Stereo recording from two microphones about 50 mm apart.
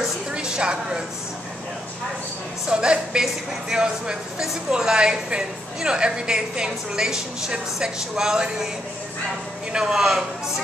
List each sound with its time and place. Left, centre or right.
0.3 s a sound: centre
2.7 s a woman's voice: centre
9.7 s a woman's voice: centre